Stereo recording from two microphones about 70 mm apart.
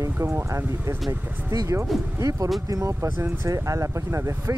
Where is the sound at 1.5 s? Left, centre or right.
Right.